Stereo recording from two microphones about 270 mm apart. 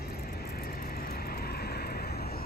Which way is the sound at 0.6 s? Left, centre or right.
Left.